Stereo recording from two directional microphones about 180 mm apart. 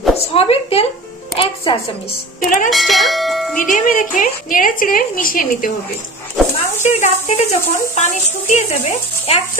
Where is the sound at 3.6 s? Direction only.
50° left (ahead or behind).